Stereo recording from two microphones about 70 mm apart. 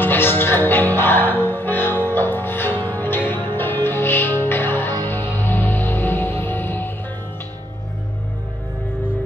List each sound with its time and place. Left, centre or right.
0.0 s music: left